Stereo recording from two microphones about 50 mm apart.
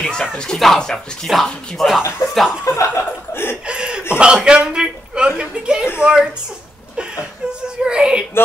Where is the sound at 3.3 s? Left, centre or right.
Left.